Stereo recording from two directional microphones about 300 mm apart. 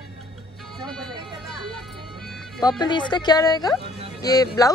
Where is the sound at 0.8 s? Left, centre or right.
Centre.